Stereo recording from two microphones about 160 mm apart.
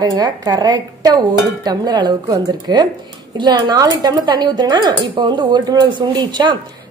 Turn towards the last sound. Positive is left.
turn(degrees=-30)  # may be behind; listen again after turning